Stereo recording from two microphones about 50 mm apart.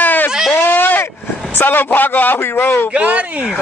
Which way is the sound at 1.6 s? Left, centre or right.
Left.